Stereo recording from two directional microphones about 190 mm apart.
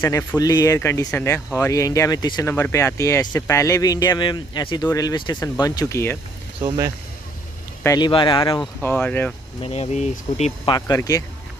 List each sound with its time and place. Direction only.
0.0 s speech: 15° left (ahead or behind)
7.8 s speech: 15° left (ahead or behind)
8.8 s speech: 10° left (ahead or behind)
9.6 s speech: 35° left (ahead or behind)
10.7 s speech: 15° left (ahead or behind)